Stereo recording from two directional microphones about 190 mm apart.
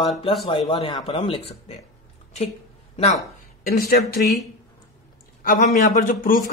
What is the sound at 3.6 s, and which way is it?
A man's voice, 50° left (ahead or behind).